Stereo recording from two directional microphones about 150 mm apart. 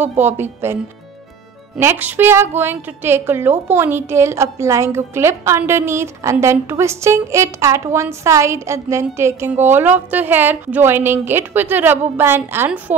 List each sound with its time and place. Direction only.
0.2 s a woman's voice: 15° right (ahead or behind)
1.8 s a woman's voice: 15° right (ahead or behind)